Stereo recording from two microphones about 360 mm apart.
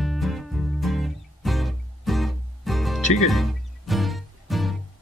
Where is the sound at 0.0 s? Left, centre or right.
Centre.